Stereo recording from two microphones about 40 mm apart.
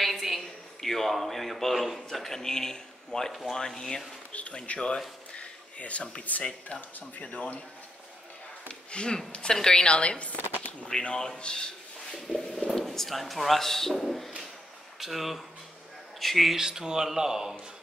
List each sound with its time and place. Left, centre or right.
0.0 s a sound: centre
2.0 s speech: centre
4.3 s speech: left
4.7 s a woman's voice: left
5.3 s a sound: left
6.4 s speech: left
8.9 s a woman's voice: left
10.9 s a woman's voice: centre
11.3 s a sound: left
12.7 s speech: centre
16.5 s speech: centre